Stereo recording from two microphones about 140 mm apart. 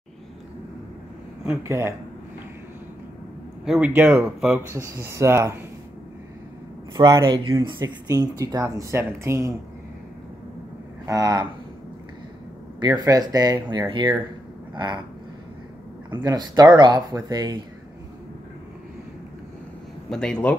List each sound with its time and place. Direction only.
1.6 s speech: 20° right (ahead or behind)
3.6 s speech: 5° right (ahead or behind)
4.6 s speech: 20° right (ahead or behind)
7.2 s speech: 30° right (ahead or behind)
11.1 s speech: 25° right (ahead or behind)
12.8 s speech: 25° right (ahead or behind)
16.1 s speech: 30° right (ahead or behind)
20.1 s speech: 5° left (ahead or behind)